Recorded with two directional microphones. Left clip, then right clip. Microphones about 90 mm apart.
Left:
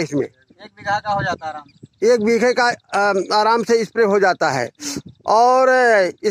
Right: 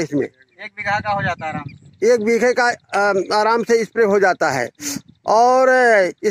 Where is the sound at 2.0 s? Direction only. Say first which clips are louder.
Even; 20° right (ahead or behind).